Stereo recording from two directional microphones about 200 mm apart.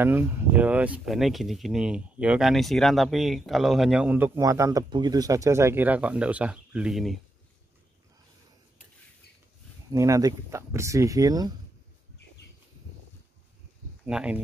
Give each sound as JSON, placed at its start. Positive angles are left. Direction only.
{"t": 0.0, "sound": "speech", "side_deg": -10}
{"t": 9.8, "sound": "speech", "side_deg": -15}
{"t": 14.0, "sound": "speech", "side_deg": -5}